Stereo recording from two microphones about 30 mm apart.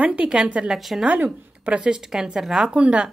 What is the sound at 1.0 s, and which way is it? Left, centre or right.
Speech, right.